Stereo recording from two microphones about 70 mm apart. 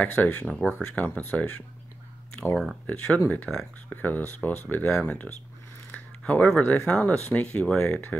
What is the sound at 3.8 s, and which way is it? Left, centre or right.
Speech, left.